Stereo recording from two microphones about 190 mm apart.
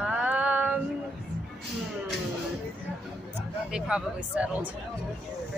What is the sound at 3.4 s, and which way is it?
Speech, 5° right (ahead or behind).